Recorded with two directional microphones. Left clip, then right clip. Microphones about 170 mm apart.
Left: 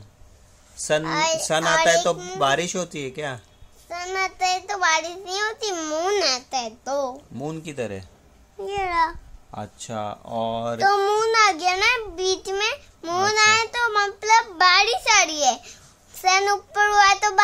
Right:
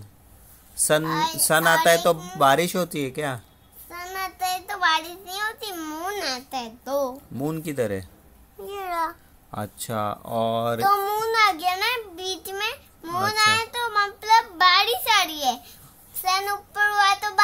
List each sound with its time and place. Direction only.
0.7 s a child's voice: 15° right (ahead or behind)
1.0 s a child's voice: 35° left (ahead or behind)
1.4 s speech: 15° right (ahead or behind)
3.9 s a child's voice: 30° left (ahead or behind)
7.3 s speech: 10° right (ahead or behind)
8.6 s a child's voice: 25° left (ahead or behind)
9.5 s speech: 20° right (ahead or behind)
10.8 s a child's voice: 30° left (ahead or behind)